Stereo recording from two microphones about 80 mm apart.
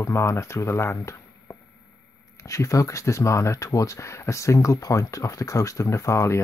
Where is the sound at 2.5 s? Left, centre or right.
Left.